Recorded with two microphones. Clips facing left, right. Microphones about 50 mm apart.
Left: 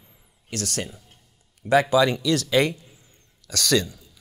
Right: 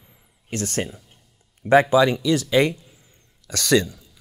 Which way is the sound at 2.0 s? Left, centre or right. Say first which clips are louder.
Right 2 dB; centre.